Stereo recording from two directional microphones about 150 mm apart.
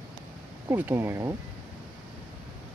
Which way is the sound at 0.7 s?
15° right (ahead or behind).